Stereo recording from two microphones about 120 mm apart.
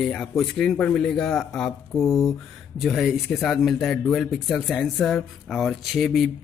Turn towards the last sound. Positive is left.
turn(degrees=0)  # may be behind; listen again after turning